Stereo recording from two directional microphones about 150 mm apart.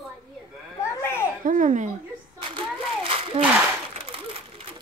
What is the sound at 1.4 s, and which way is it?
Speech, 60° right (ahead or behind).